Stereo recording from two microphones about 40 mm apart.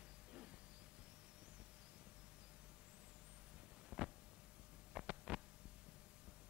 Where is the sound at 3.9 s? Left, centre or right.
Right.